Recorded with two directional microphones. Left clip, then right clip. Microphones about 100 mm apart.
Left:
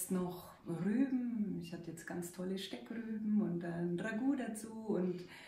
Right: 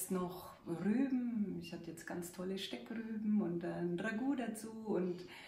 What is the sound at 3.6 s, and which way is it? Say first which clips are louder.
Speech: right 1 dB; 35° right (ahead or behind).